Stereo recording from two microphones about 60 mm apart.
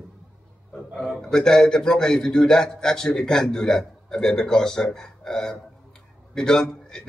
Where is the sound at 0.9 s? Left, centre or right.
Centre.